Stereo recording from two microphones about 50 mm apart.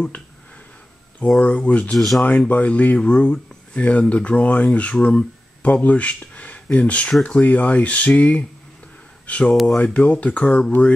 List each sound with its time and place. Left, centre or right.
1.4 s speech: left
2.0 s speech: centre
2.2 s speech: left